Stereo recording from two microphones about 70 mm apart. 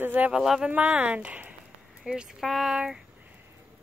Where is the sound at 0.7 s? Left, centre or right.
Right.